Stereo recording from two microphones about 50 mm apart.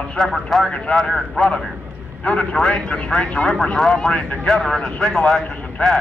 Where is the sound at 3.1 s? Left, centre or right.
Left.